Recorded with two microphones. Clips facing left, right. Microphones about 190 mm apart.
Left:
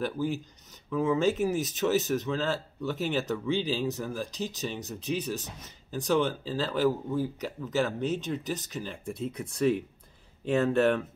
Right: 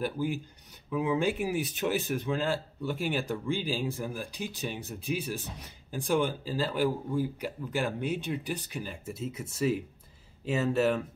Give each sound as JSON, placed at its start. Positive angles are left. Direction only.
{"t": 0.0, "sound": "speech", "side_deg": -10}